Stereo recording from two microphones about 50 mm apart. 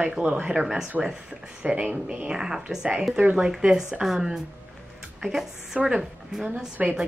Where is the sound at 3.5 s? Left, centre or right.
Centre.